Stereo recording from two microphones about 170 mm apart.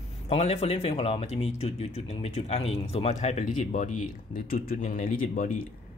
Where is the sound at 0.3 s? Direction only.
40° left (ahead or behind).